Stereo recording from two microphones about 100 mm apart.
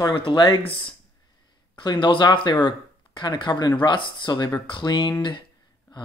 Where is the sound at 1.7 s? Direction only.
50° left (ahead or behind).